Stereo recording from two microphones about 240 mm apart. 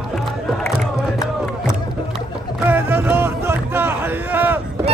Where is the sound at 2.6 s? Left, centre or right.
Centre.